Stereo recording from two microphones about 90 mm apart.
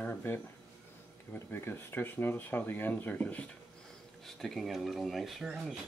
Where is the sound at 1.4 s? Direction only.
25° left (ahead or behind).